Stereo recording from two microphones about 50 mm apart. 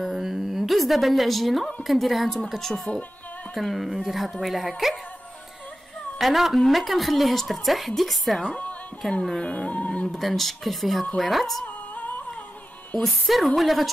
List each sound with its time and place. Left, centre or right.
0.0 s a woman's voice: centre
3.5 s a woman's voice: centre
6.1 s a woman's voice: centre
8.5 s speech: left
9.2 s speech: centre
9.5 s music: left
10.0 s a woman's voice: centre
11.6 s music: left
13.0 s a woman's voice: centre